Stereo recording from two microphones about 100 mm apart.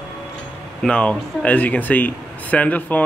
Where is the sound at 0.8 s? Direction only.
10° left (ahead or behind).